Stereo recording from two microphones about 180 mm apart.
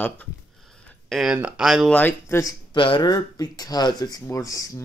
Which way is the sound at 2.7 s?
25° left (ahead or behind).